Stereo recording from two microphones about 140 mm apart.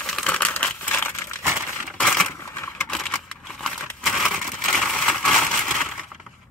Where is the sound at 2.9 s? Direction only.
5° left (ahead or behind).